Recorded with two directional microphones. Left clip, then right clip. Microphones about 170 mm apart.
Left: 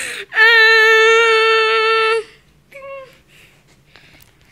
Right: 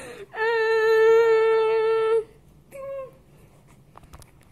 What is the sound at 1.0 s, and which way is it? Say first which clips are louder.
Humming: left 6 dB; 25° left (ahead or behind).